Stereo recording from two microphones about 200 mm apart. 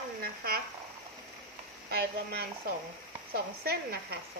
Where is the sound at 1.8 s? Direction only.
50° right (ahead or behind).